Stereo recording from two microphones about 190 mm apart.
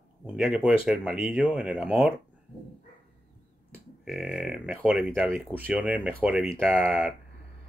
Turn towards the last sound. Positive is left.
turn(degrees=-5)  # may be behind; listen again after turning